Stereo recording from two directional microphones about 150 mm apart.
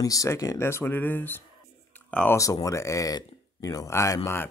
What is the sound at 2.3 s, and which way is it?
Speech, 20° left (ahead or behind).